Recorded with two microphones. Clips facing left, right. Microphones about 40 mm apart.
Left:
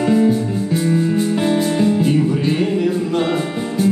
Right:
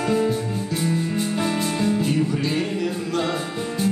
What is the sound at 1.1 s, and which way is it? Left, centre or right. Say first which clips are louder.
Music: left 7 dB; left.